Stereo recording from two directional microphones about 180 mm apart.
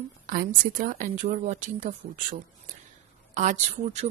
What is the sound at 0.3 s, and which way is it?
Speech, 50° right (ahead or behind).